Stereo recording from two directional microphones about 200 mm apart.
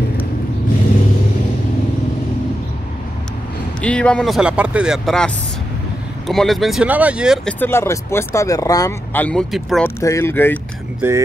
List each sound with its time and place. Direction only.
3.8 s speech: 5° left (ahead or behind)
7.6 s speech: 10° left (ahead or behind)
9.8 s speech: 15° left (ahead or behind)
11.0 s speech: 15° right (ahead or behind)